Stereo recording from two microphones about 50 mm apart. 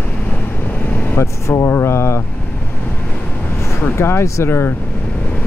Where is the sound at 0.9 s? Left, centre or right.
Left.